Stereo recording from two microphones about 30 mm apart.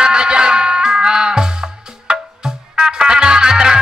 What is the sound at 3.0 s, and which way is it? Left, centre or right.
Music, right.